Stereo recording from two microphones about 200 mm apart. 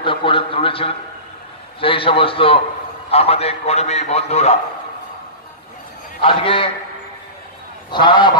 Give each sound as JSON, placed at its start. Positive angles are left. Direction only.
{"t": 0.0, "sound": "a man's voice", "side_deg": 25}
{"t": 6.2, "sound": "a man's voice", "side_deg": 25}
{"t": 7.9, "sound": "a man's voice", "side_deg": 25}